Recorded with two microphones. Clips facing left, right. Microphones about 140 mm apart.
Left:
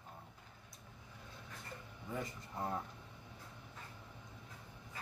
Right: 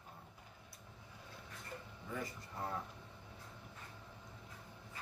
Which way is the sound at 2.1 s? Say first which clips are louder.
Left 1 dB; 20° left (ahead or behind).